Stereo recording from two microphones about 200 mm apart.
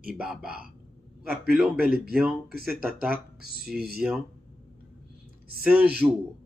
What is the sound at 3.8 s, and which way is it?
Speech, 50° right (ahead or behind).